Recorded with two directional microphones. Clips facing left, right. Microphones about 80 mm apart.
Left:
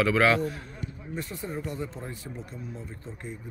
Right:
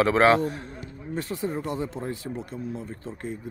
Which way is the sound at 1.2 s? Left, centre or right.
Right.